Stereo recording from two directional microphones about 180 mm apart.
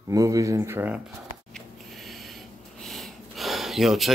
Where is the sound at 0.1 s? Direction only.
20° right (ahead or behind).